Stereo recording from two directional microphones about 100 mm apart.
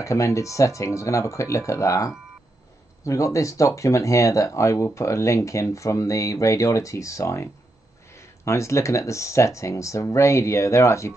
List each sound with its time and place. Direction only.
0.0 s speech: 30° left (ahead or behind)